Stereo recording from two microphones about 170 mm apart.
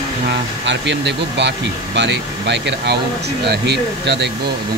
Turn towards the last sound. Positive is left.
turn(degrees=-80)